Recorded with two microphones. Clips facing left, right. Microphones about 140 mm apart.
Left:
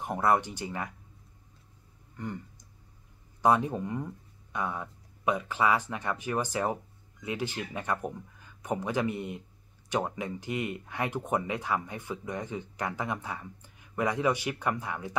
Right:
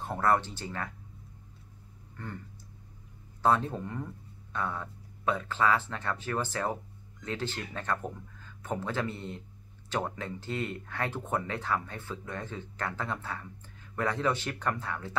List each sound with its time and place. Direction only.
0.0 s speech: 15° left (ahead or behind)
2.1 s a sound: 15° left (ahead or behind)
3.4 s speech: 15° left (ahead or behind)